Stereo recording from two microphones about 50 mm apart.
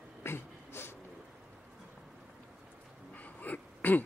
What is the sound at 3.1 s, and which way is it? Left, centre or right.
Sneeze, left.